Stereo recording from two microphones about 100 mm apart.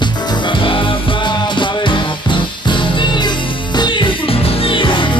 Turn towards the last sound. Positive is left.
turn(degrees=55)  # may be behind; listen again after turning